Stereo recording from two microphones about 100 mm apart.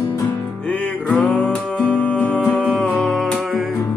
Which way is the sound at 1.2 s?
15° left (ahead or behind).